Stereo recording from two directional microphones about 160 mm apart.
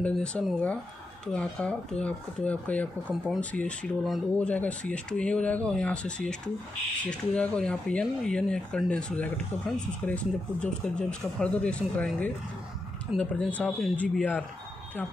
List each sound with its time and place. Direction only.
0.0 s speech: 5° left (ahead or behind)